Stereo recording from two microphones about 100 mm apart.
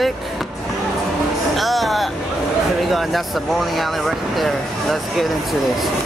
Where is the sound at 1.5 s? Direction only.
Centre (ahead or behind).